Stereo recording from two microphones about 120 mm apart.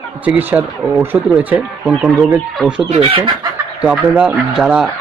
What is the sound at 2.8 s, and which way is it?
Speech, 55° right (ahead or behind).